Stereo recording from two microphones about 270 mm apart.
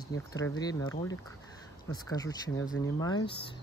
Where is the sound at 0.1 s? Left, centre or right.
Centre.